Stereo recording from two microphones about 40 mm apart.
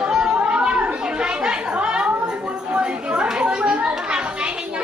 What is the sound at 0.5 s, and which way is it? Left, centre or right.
Chatter, right.